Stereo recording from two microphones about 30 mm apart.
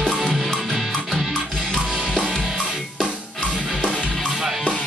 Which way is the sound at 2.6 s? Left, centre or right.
Centre.